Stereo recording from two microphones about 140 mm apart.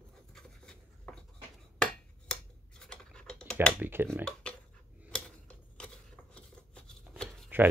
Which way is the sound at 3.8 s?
15° right (ahead or behind).